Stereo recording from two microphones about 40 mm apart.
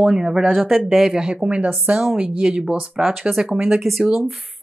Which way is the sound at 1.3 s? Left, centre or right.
Right.